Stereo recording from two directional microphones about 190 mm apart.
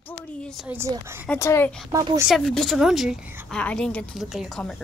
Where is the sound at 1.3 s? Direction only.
10° left (ahead or behind).